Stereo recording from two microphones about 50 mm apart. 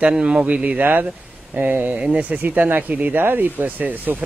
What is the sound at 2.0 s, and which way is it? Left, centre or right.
Speech, right.